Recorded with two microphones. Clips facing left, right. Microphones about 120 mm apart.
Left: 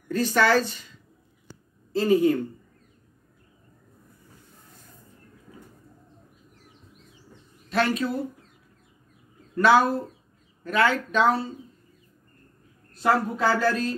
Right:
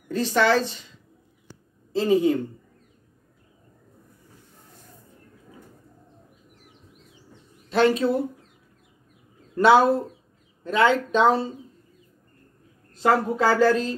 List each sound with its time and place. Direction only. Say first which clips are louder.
0.1 s a woman's voice: right 1 dB; 25° right (ahead or behind)
1.9 s a woman's voice: even; 25° right (ahead or behind)
7.7 s a woman's voice: right 5 dB; 30° right (ahead or behind)
9.6 s a woman's voice: right 3 dB; 25° right (ahead or behind)
12.9 s a woman's voice: right 2 dB; 20° right (ahead or behind)